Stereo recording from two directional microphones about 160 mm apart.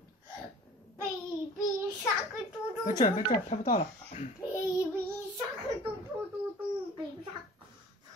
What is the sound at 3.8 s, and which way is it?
Speech, 45° left (ahead or behind).